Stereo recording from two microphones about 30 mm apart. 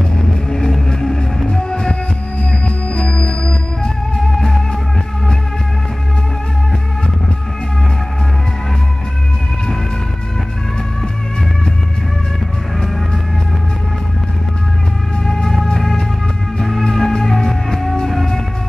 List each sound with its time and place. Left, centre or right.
0.5 s music: left
4.2 s music: centre
15.2 s music: centre